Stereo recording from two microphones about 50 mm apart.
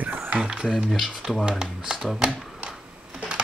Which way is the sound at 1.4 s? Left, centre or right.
Centre.